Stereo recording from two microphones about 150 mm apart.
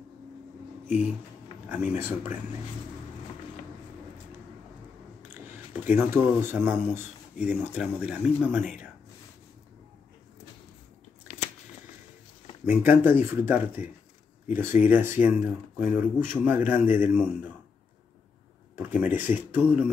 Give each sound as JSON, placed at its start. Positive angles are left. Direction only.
{"t": 2.0, "sound": "speech", "side_deg": -15}
{"t": 5.3, "sound": "speech", "side_deg": -15}
{"t": 12.6, "sound": "speech", "side_deg": -15}
{"t": 18.8, "sound": "speech", "side_deg": -15}